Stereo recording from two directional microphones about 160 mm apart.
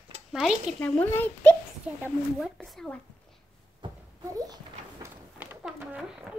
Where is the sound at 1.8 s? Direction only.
5° right (ahead or behind).